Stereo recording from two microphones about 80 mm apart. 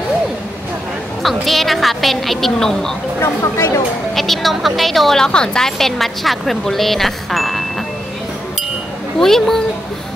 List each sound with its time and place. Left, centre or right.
1.2 s a woman's voice: centre
3.2 s speech: left
4.1 s a woman's voice: centre
9.2 s a woman's voice: centre